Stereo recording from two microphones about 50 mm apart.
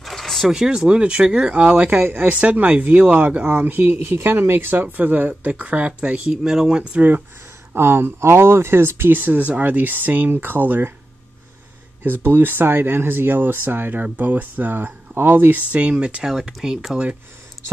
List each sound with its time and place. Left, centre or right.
0.0 s vehicle: centre
0.5 s speech: centre; by 4.8 s right
4.9 s speech: right
6.3 s speech: centre
7.0 s speech: right
7.7 s speech: right
12.0 s speech: right
16.3 s speech: centre